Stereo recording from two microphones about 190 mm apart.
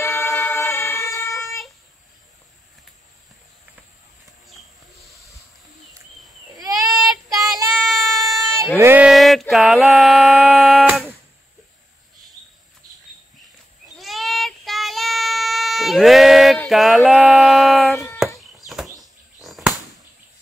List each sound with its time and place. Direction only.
0.0 s vehicle: 10° left (ahead or behind)
6.8 s child singing: centre (ahead or behind)
7.2 s child singing: 20° right (ahead or behind)
7.9 s a sound: centre (ahead or behind)
8.7 s a sound: 10° right (ahead or behind)
13.8 s child singing: centre (ahead or behind)
18.9 s chirp: centre (ahead or behind)